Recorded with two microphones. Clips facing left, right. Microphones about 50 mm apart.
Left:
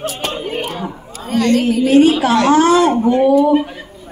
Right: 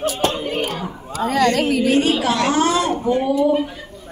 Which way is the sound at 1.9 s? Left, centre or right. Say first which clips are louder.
Left 10 dB; left.